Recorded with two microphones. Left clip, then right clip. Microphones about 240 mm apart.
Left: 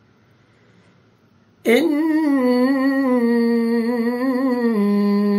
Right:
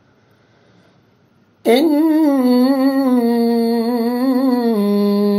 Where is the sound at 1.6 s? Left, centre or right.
Centre.